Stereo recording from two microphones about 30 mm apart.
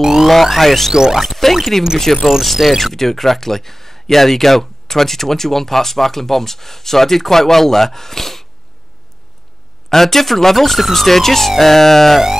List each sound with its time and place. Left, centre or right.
0.0 s music: centre
0.3 s music: centre
0.9 s speech: centre
1.2 s music: centre
2.1 s speech: centre
2.4 s music: centre
2.8 s speech: centre
9.8 s speech: centre